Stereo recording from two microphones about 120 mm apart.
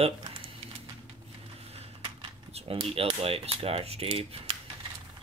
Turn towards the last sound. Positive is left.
turn(degrees=-50)  # may be behind; listen again after turning